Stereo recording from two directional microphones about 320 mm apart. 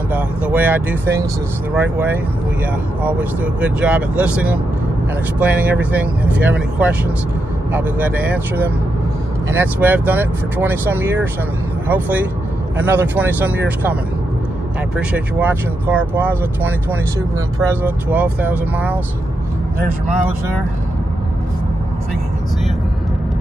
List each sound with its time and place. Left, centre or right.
0.1 s speech: centre
15.0 s speech: centre